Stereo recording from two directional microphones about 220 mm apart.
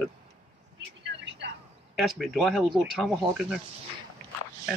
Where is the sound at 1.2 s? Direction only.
50° right (ahead or behind).